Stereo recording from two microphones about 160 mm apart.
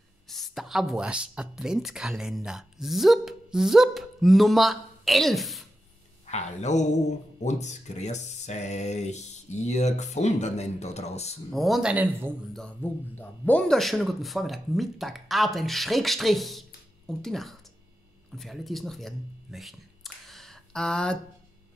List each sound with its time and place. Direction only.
0.3 s speech: centre (ahead or behind)
6.2 s speech: 45° left (ahead or behind)
11.5 s speech: centre (ahead or behind)
12.5 s speech: 10° left (ahead or behind)